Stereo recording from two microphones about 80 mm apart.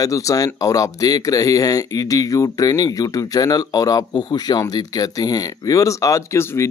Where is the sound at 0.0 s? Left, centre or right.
Left.